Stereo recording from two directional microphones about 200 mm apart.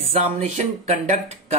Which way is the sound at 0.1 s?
35° right (ahead or behind).